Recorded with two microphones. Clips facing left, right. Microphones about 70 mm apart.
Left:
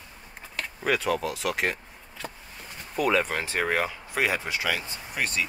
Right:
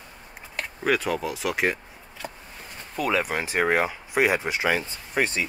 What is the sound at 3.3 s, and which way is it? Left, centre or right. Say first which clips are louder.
Speech: right 4 dB; centre.